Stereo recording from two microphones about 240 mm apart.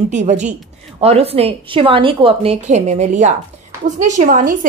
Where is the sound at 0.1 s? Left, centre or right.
Right.